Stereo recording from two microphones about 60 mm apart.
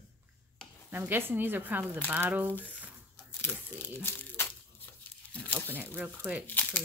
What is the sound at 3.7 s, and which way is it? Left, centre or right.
Speech, left.